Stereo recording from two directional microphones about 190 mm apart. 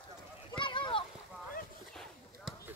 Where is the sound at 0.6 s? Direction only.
25° left (ahead or behind).